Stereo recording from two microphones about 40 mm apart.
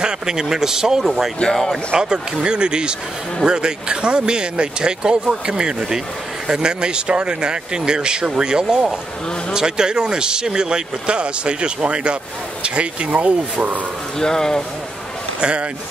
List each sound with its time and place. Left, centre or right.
0.0 s speech: centre
2.0 s speech: centre; by 13.7 s right
14.1 s speech: centre